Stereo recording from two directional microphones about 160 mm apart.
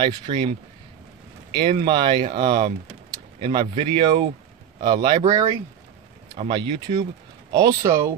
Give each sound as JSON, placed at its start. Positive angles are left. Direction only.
{"t": 0.0, "sound": "speech", "side_deg": -30}
{"t": 1.5, "sound": "speech", "side_deg": -30}
{"t": 7.5, "sound": "speech", "side_deg": -25}